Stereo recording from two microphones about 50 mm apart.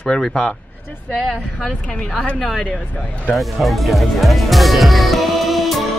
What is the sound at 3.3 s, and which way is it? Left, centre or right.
Music, centre.